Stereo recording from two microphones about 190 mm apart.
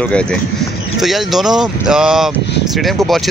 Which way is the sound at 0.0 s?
5° left (ahead or behind).